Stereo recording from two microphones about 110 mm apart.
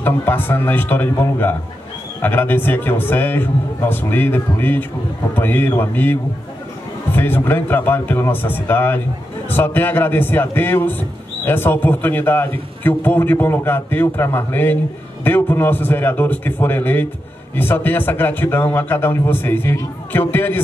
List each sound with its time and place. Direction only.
0.0 s a man's voice: 20° left (ahead or behind)
7.2 s a man's voice: 20° left (ahead or behind)